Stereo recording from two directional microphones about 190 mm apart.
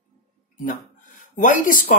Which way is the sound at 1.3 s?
45° left (ahead or behind).